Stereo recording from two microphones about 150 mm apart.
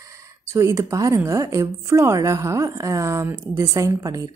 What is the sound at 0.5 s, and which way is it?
A woman's voice, 20° right (ahead or behind).